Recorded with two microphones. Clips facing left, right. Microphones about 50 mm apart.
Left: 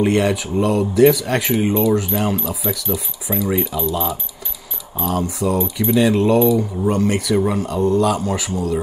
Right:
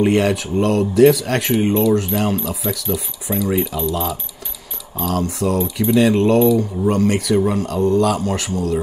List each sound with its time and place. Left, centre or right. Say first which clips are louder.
0.0 s speech: right 1 dB; centre